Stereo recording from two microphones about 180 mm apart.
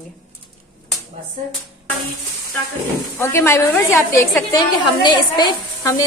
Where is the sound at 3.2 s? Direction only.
15° left (ahead or behind).